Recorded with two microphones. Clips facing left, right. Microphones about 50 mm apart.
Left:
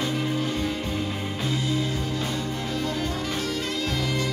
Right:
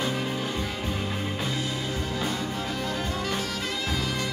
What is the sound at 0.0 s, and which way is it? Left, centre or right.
Music, centre.